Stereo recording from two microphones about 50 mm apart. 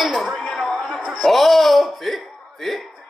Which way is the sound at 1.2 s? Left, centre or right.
Centre.